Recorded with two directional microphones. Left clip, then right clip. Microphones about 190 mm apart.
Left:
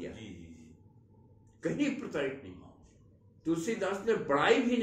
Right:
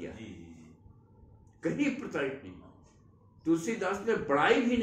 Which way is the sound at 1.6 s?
Centre (ahead or behind).